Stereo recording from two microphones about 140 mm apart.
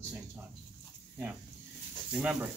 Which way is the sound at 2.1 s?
5° right (ahead or behind).